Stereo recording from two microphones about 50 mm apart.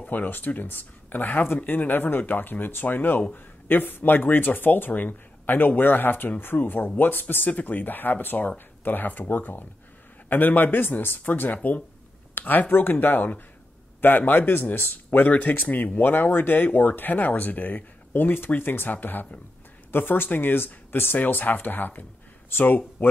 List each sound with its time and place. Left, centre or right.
0.0 s speech: left